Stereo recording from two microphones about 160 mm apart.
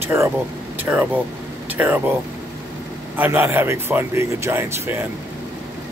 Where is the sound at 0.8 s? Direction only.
10° right (ahead or behind).